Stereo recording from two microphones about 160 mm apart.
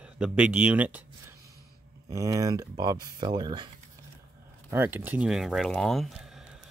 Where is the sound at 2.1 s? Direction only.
20° right (ahead or behind).